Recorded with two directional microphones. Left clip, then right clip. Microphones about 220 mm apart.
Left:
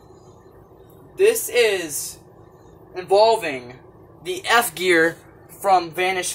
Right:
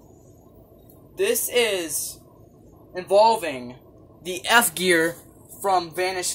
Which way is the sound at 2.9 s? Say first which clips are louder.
Left 1 dB; 45° right (ahead or behind).